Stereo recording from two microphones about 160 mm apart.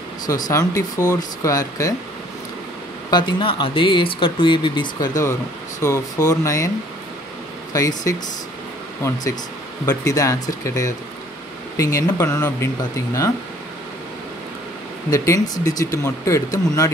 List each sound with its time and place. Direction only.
0.3 s speech: 20° left (ahead or behind)
3.1 s speech: 30° left (ahead or behind)
7.7 s speech: 20° left (ahead or behind)
15.0 s speech: 20° left (ahead or behind)